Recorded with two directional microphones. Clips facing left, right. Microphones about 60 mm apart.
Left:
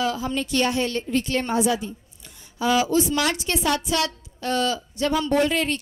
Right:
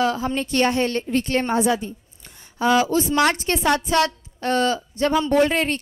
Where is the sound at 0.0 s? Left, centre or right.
Right.